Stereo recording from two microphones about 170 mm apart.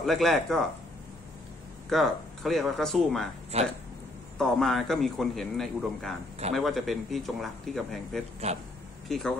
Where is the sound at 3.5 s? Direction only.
40° right (ahead or behind).